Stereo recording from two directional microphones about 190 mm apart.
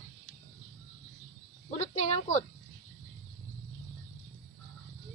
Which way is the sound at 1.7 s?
35° left (ahead or behind).